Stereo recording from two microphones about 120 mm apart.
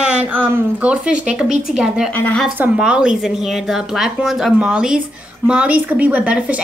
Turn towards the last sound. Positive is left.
turn(degrees=-10)  # may be behind; listen again after turning